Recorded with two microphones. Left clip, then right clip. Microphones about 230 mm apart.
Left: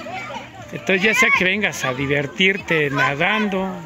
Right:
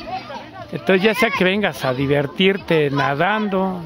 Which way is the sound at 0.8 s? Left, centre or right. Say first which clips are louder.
Left 1 dB; centre.